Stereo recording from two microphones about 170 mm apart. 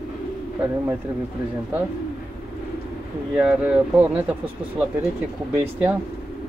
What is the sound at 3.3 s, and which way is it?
Speech, 5° right (ahead or behind).